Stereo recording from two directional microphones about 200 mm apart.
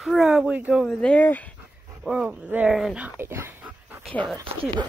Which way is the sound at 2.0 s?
5° right (ahead or behind).